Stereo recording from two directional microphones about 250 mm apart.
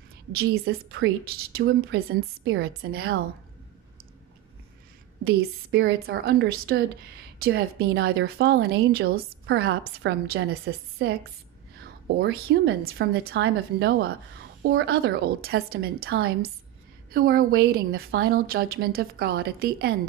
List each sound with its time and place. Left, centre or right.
0.3 s a woman's voice: right
5.2 s a woman's voice: right